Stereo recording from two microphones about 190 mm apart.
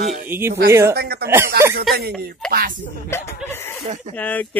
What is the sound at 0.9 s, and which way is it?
Speech, 55° right (ahead or behind).